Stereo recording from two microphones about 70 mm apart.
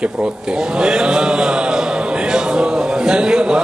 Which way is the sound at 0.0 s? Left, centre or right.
Centre.